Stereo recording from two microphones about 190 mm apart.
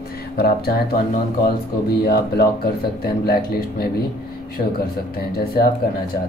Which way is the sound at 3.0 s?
55° left (ahead or behind).